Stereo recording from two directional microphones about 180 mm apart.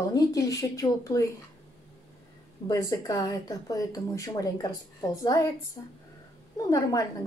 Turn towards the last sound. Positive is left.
turn(degrees=20)  # may be behind; listen again after turning